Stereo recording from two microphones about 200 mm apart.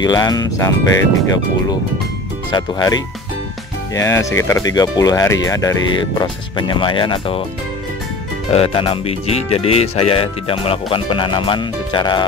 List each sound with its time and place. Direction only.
0.0 s speech: 20° left (ahead or behind)
2.5 s speech: 20° left (ahead or behind)
8.5 s speech: 30° left (ahead or behind)